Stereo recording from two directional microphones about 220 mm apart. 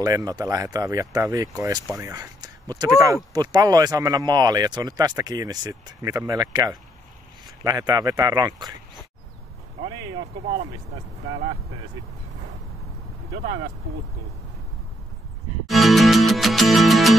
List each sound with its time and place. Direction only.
0.0 s speech: 15° right (ahead or behind)
15.6 s music: centre (ahead or behind)